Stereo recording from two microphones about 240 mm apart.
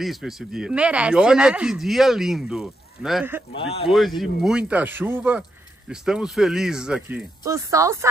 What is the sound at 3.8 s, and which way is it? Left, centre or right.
Speech, centre.